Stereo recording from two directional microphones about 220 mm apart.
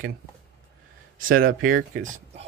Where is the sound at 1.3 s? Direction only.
65° right (ahead or behind).